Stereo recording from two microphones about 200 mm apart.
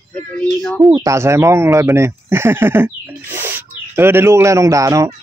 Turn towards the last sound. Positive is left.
turn(degrees=-15)  # may be behind; listen again after turning